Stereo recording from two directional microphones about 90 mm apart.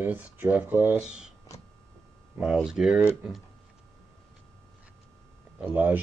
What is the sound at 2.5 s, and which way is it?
Speech, 5° right (ahead or behind).